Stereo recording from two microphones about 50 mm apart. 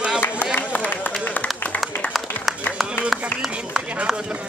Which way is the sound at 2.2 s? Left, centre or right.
Centre.